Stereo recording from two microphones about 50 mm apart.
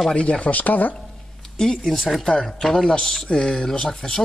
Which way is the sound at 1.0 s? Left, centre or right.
Centre.